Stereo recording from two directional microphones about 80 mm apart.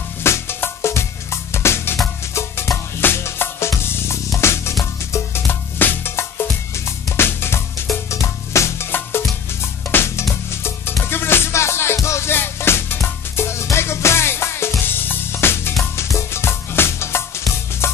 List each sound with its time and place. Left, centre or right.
0.2 s music: left